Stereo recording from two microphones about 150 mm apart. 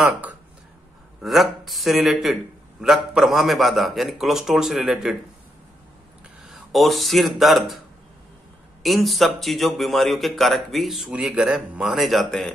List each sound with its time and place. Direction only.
0.0 s speech: 10° right (ahead or behind)
6.4 s speech: centre (ahead or behind)
8.8 s speech: centre (ahead or behind)